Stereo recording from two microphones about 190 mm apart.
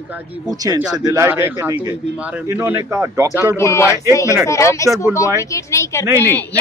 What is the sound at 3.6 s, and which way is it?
Speech, 15° left (ahead or behind).